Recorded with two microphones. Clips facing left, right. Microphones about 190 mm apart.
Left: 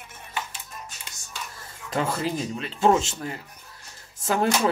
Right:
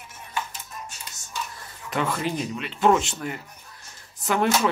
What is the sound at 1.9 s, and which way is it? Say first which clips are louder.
Speech: even; 30° left (ahead or behind).